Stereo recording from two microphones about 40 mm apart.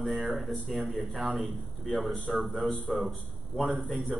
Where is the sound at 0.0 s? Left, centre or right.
Centre.